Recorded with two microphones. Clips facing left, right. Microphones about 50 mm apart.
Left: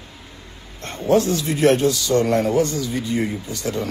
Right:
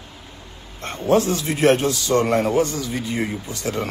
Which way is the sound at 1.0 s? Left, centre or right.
Right.